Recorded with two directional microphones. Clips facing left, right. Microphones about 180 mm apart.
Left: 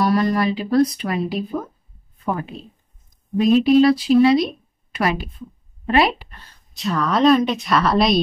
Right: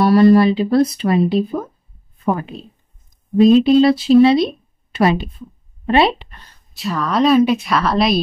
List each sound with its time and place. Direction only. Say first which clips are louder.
0.0 s speech: right 8 dB; 30° right (ahead or behind)
6.8 s speech: right 1 dB; centre (ahead or behind)